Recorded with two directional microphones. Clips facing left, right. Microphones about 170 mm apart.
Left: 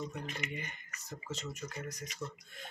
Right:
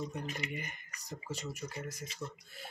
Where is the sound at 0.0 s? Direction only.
10° right (ahead or behind).